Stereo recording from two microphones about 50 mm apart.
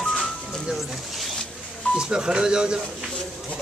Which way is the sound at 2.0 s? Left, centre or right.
Centre.